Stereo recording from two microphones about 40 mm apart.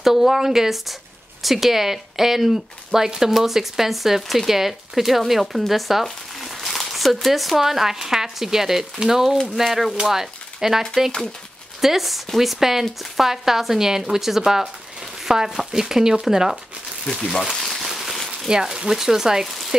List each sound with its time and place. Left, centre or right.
0.0 s speech: centre
11.8 s speech: centre
17.0 s speech: centre
17.6 s a sound: centre
18.1 s a sound: centre
18.5 s speech: centre